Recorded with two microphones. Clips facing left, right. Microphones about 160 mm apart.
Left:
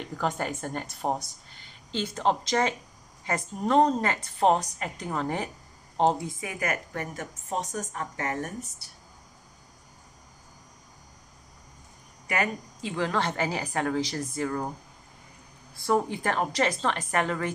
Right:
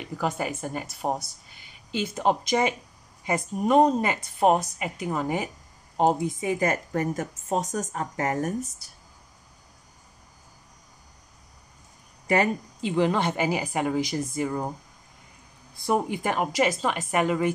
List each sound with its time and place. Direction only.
0.0 s a woman's voice: 5° right (ahead or behind)
6.4 s a woman's voice: 25° right (ahead or behind)
12.3 s speech: 30° right (ahead or behind)
12.9 s a woman's voice: 15° right (ahead or behind)
15.7 s a woman's voice: 15° right (ahead or behind)